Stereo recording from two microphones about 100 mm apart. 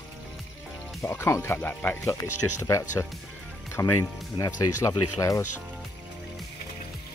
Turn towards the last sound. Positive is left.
turn(degrees=30)  # may be behind; listen again after turning